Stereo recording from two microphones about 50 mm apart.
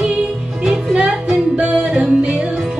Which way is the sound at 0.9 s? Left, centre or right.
Centre.